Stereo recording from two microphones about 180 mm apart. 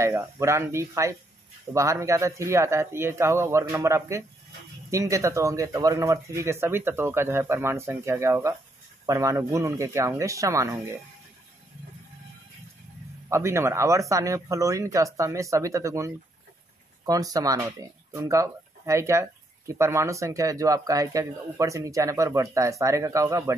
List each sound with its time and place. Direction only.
0.0 s speech: 15° right (ahead or behind)
13.3 s speech: 15° right (ahead or behind)